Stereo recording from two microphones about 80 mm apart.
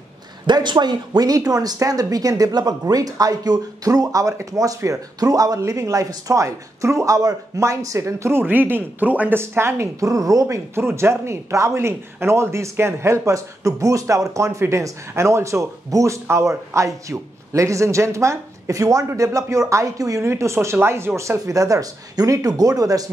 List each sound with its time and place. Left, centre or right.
0.5 s speech: right; by 9.4 s centre
9.4 s speech: right
10.8 s speech: right
21.2 s speech: right